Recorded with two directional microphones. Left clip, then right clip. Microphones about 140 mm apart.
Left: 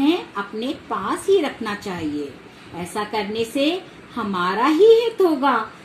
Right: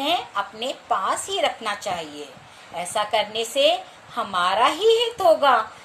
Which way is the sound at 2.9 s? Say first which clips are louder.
Right 2 dB; 35° right (ahead or behind).